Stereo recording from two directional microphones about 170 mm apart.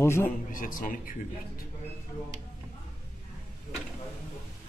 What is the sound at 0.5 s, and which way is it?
Speech, 50° left (ahead or behind).